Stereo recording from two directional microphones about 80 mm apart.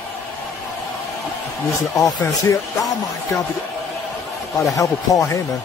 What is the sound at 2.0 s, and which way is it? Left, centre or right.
Speech, left.